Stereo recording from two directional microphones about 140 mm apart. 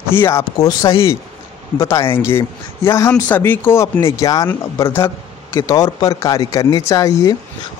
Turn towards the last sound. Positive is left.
turn(degrees=25)  # may be behind; listen again after turning